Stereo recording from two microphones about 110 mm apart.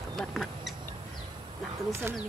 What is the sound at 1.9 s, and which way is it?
Speech, 25° right (ahead or behind).